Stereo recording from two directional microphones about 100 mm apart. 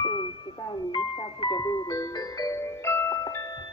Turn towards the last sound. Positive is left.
turn(degrees=25)  # may be behind; listen again after turning